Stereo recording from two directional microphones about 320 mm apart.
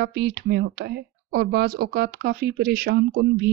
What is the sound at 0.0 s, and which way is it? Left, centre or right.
Speech, right.